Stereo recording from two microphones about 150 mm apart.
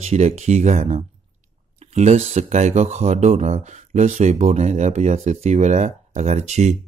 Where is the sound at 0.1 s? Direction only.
50° right (ahead or behind).